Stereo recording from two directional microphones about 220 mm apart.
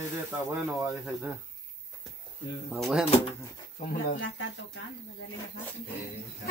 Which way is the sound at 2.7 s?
Centre (ahead or behind).